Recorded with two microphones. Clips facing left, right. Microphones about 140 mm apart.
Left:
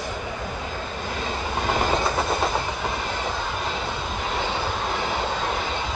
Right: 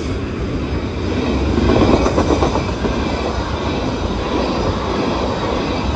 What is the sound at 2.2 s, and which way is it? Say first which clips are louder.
Train: right 9 dB; 75° right (ahead or behind).